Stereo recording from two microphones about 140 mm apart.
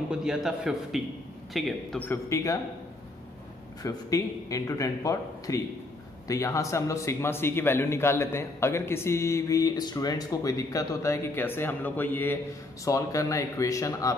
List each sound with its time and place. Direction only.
0.1 s a man's voice: 5° right (ahead or behind)
2.0 s a man's voice: 15° left (ahead or behind)
3.8 s a man's voice: 25° left (ahead or behind)